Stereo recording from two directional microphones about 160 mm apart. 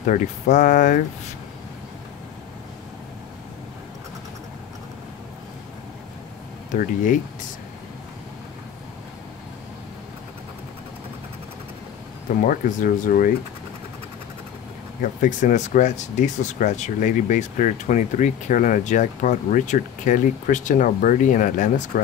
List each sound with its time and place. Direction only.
0.0 s speech: 50° left (ahead or behind)
6.7 s speech: 55° left (ahead or behind)
12.4 s speech: 55° left (ahead or behind)
15.0 s speech: 50° left (ahead or behind)